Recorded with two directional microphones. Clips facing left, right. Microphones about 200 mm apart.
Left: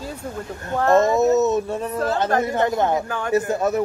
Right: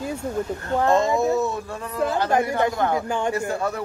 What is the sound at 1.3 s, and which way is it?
Speech, 20° left (ahead or behind).